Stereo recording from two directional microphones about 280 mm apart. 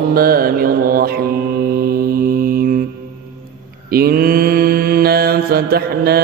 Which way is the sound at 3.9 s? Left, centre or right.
Right.